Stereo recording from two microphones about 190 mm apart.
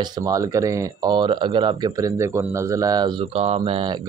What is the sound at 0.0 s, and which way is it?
Speech, 20° right (ahead or behind).